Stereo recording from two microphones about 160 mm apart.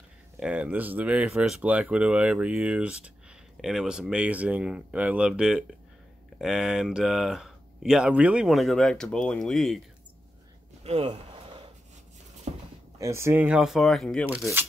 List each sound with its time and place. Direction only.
0.4 s speech: 5° right (ahead or behind)
10.8 s a sound: 40° right (ahead or behind)
13.0 s speech: 15° right (ahead or behind); by 14.2 s 5° left (ahead or behind)